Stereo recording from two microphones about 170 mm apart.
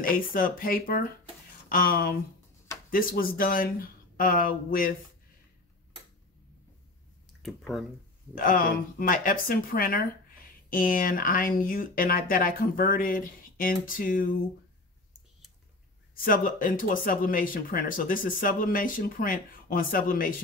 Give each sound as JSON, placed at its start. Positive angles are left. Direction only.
{"t": 0.0, "sound": "speech", "side_deg": 55}
{"t": 7.4, "sound": "speech", "side_deg": 0}
{"t": 8.4, "sound": "speech", "side_deg": 55}
{"t": 16.3, "sound": "speech", "side_deg": 55}